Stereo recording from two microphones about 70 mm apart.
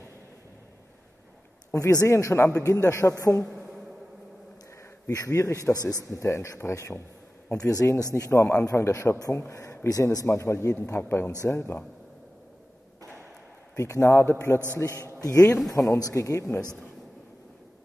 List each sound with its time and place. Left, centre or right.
1.7 s a man's voice: left
5.1 s a man's voice: left
7.5 s speech: left
8.1 s a man's voice: left
9.8 s a man's voice: left
11.0 s a man's voice: left
13.7 s a man's voice: left
15.1 s speech: left
16.2 s a man's voice: left